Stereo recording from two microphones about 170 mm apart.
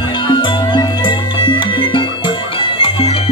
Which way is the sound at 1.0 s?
30° left (ahead or behind).